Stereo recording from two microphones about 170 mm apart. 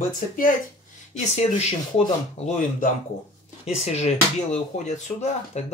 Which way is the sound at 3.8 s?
40° left (ahead or behind).